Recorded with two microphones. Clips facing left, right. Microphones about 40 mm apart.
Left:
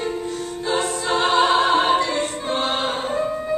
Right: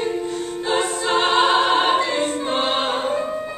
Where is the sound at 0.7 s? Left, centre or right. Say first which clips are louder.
Right 2 dB; right.